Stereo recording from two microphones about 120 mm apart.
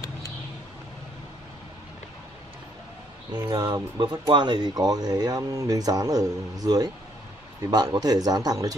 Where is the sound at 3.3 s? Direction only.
35° right (ahead or behind).